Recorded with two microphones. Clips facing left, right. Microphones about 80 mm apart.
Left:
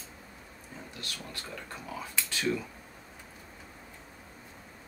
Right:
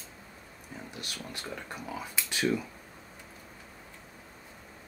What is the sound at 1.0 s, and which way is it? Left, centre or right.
Speech, centre.